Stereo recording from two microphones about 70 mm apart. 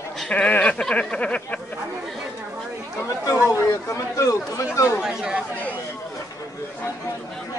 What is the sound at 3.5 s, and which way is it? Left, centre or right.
Speech, left.